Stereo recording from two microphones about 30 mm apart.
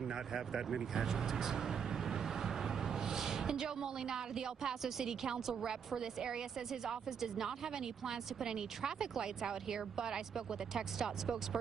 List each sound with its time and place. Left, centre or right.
0.0 s a woman's voice: centre